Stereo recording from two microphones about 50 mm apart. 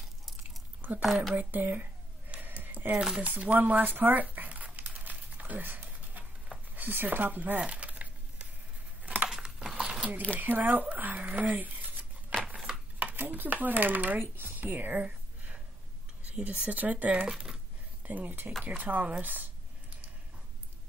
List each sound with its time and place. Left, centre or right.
0.4 s chewing: right
1.0 s speech: centre
1.3 s speech: right
2.4 s a sound: right
3.2 s crumpling: right
6.7 s speech: right
7.6 s a sound: right
9.3 s a sound: centre
10.4 s speech: right
15.0 s a sound: right
16.3 s speech: right
17.3 s speech: centre
18.0 s speech: right